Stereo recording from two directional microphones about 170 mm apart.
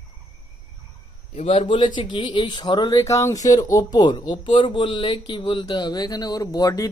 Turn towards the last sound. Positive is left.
turn(degrees=20)  # may be behind; listen again after turning